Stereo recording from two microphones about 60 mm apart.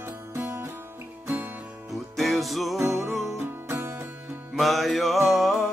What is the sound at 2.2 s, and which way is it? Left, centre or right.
Music, centre.